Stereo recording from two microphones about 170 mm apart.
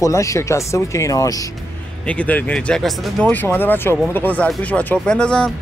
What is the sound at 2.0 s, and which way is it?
Speech, 10° left (ahead or behind).